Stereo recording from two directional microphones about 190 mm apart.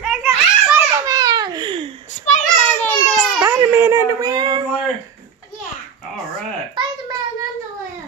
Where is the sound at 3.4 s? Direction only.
15° right (ahead or behind).